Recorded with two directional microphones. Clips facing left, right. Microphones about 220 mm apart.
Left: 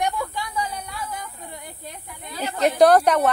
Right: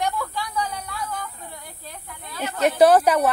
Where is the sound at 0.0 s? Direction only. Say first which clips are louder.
Left 1 dB; 15° left (ahead or behind).